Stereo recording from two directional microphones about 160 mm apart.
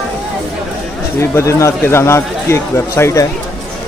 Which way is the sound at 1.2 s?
15° left (ahead or behind).